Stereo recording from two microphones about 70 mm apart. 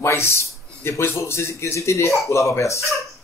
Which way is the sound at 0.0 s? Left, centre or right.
Left.